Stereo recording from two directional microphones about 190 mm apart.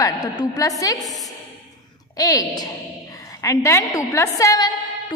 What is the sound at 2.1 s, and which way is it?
A woman's voice, 20° left (ahead or behind).